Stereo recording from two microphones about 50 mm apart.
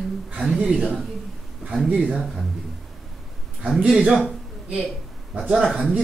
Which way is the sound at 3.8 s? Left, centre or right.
Right.